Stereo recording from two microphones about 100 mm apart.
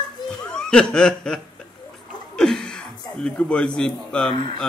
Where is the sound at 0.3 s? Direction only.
10° left (ahead or behind).